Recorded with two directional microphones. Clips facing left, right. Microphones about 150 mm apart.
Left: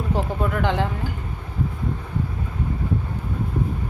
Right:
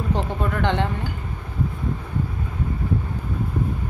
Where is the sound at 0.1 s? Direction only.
5° left (ahead or behind).